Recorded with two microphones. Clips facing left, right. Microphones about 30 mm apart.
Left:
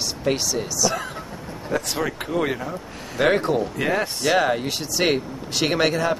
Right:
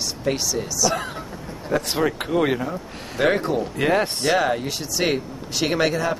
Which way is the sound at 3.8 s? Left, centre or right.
Right.